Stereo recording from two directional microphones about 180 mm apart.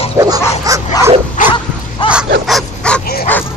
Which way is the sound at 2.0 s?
30° left (ahead or behind).